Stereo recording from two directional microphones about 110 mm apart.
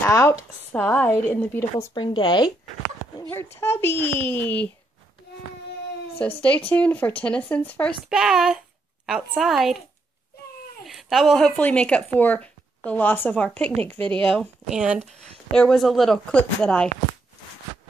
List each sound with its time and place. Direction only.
0.1 s speech: 30° left (ahead or behind)
0.7 s a woman's voice: 15° left (ahead or behind)
2.0 s speech: 45° left (ahead or behind)
3.3 s speech: 20° left (ahead or behind)
6.2 s a woman's voice: 10° left (ahead or behind)
8.1 s a child's voice: 5° right (ahead or behind)
10.9 s a woman's voice: centre (ahead or behind); by 14.1 s 15° left (ahead or behind)
14.7 s speech: 5° right (ahead or behind)
15.0 s speech: 85° right
15.5 s speech: 5° left (ahead or behind)